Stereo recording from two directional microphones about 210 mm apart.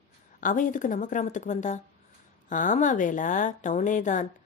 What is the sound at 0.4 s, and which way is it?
A woman's voice, 40° left (ahead or behind).